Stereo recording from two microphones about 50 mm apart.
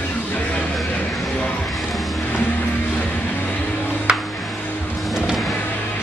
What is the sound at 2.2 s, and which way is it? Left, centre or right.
Music, left.